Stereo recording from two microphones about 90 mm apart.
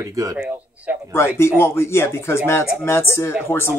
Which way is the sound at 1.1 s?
30° left (ahead or behind).